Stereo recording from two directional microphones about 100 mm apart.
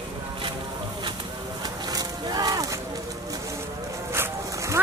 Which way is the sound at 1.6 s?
40° right (ahead or behind).